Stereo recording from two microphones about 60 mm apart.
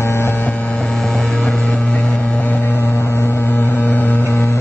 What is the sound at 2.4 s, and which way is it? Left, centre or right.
Vehicle, left.